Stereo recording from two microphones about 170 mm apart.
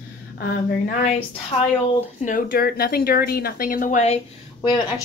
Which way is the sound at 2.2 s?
55° left (ahead or behind).